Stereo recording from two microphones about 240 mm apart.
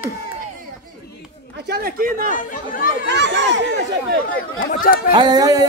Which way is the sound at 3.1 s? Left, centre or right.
Right.